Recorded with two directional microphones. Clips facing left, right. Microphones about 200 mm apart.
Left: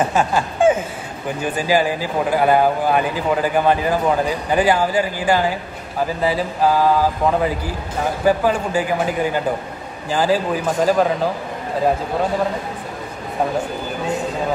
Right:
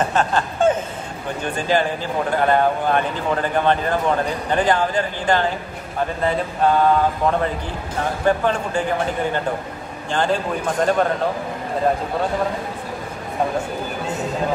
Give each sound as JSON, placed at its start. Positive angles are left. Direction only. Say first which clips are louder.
{"t": 0.0, "sound": "speech", "louder": "left 2 dB", "side_deg": 10}